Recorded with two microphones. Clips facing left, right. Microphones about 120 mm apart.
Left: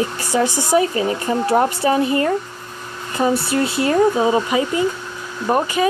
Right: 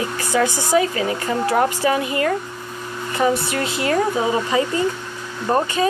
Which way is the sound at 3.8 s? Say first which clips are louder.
Left 4 dB; 25° left (ahead or behind).